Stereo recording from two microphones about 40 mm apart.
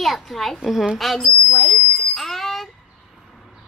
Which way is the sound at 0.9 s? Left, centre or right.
Centre.